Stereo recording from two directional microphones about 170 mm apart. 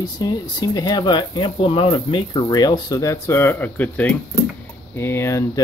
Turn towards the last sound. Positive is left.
turn(degrees=15)  # may be behind; listen again after turning